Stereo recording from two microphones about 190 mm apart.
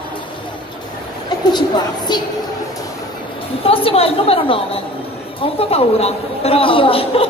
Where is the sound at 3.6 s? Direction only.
30° left (ahead or behind).